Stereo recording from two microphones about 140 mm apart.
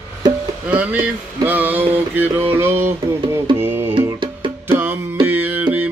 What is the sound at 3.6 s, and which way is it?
Music, 15° right (ahead or behind).